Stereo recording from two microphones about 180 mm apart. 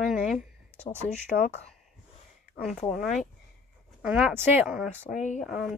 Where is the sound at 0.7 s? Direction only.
40° left (ahead or behind).